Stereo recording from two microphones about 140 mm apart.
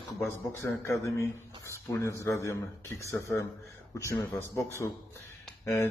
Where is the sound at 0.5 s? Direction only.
20° left (ahead or behind).